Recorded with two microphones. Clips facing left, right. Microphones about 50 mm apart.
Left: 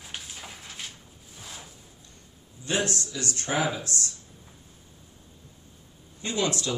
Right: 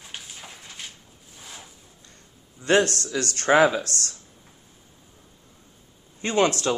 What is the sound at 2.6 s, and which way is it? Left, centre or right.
A man's voice, right.